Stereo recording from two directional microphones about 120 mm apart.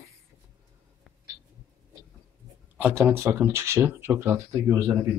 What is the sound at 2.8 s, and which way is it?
Speech, 20° right (ahead or behind).